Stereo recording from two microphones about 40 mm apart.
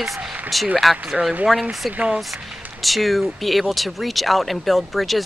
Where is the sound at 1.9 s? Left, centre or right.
Right.